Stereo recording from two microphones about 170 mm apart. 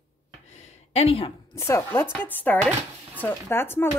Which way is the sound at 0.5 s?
40° left (ahead or behind).